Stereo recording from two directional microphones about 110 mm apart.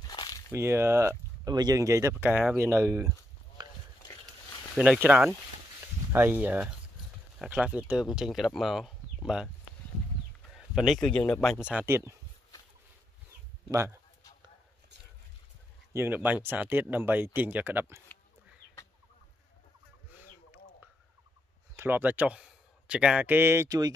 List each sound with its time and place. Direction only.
0.0 s a sound: 40° left (ahead or behind)
0.5 s speech: 25° right (ahead or behind)
1.5 s speech: 35° right (ahead or behind)
3.6 s a sound: 45° right (ahead or behind)
4.0 s a sound: 35° left (ahead or behind)
5.1 s speech: 10° right (ahead or behind)
10.5 s a man's voice: 5° right (ahead or behind)
11.5 s speech: 10° right (ahead or behind)
11.8 s speech: 25° right (ahead or behind)
13.7 s speech: 25° right (ahead or behind)
15.9 s speech: 20° right (ahead or behind)
20.1 s a sound: 15° right (ahead or behind)
21.7 s speech: 15° right (ahead or behind)